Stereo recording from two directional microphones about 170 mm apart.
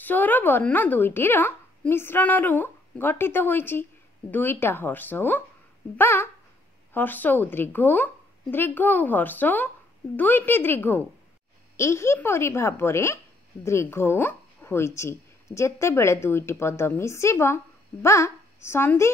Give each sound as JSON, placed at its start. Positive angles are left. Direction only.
{"t": 0.0, "sound": "a woman's voice", "side_deg": 10}